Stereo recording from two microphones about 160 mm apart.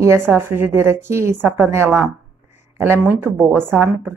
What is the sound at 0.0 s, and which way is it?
A woman's voice, 15° right (ahead or behind).